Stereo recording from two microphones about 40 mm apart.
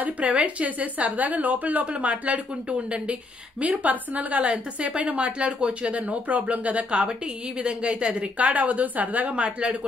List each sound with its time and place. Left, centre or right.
0.0 s a woman's voice: right
3.6 s a woman's voice: right
8.4 s a woman's voice: right